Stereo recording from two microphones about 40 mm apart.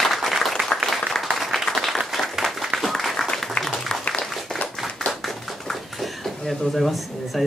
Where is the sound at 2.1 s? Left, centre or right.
Centre.